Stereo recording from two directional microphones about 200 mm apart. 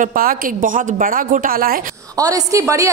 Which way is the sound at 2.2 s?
15° right (ahead or behind).